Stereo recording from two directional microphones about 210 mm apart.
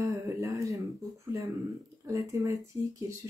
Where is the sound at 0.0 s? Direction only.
15° right (ahead or behind).